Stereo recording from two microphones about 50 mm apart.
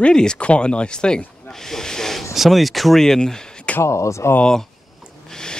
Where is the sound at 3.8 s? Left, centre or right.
Left.